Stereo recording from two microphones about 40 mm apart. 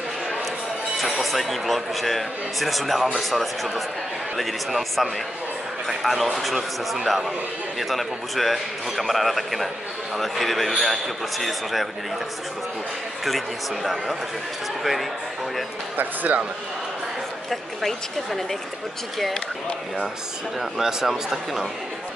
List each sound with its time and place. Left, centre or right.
0.9 s speech: centre
14.8 s speech: centre
16.0 s speech: right
17.5 s speech: centre
20.7 s speech: centre